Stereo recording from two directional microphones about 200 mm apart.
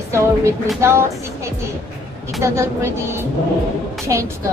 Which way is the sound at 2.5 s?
15° right (ahead or behind).